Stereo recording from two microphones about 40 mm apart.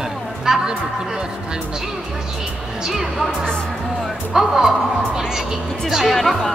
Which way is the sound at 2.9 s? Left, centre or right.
Centre.